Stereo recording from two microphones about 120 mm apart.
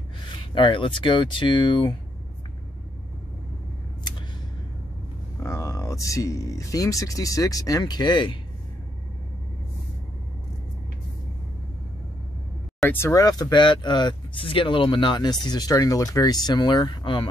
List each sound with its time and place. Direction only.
0.6 s speech: 45° left (ahead or behind)
5.4 s speech: 25° left (ahead or behind)
13.0 s speech: 30° left (ahead or behind)